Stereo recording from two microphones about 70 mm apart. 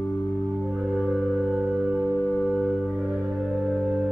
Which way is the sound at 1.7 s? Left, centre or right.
Centre.